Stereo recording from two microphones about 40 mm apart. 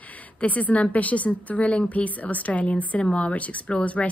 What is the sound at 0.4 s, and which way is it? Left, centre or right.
Speech, left.